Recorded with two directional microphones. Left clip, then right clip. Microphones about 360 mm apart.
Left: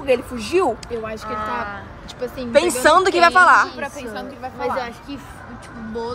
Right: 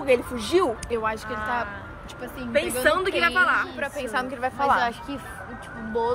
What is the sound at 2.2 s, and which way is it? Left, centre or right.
A woman's voice, centre.